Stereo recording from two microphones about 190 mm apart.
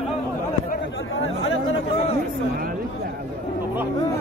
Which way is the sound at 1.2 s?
90° left.